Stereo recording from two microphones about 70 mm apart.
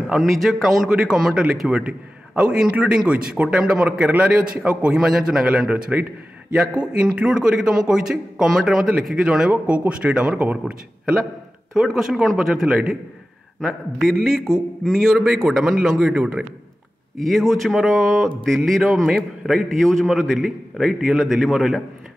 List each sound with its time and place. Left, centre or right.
0.1 s a man's voice: centre
5.7 s a man's voice: centre
11.7 s a man's voice: centre
17.2 s a man's voice: centre